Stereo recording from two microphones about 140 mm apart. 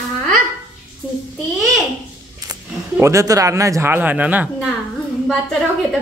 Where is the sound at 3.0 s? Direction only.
20° right (ahead or behind).